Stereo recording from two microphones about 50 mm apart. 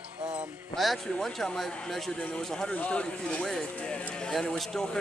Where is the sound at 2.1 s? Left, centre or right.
Left.